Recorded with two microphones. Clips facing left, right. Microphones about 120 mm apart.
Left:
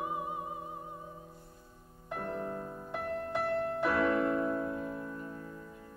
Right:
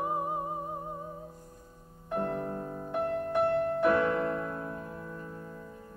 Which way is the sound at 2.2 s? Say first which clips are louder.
Right 5 dB; 35° right (ahead or behind).